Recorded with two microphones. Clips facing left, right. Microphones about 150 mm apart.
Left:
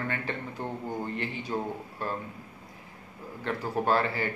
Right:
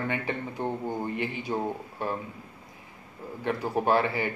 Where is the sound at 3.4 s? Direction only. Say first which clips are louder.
Right 2 dB; 15° right (ahead or behind).